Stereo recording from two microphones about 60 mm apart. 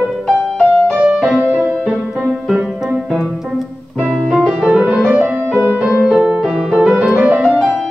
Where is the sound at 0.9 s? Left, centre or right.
Right.